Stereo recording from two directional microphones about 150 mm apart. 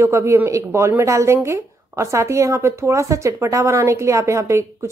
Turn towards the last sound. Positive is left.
turn(degrees=-20)  # may be behind; listen again after turning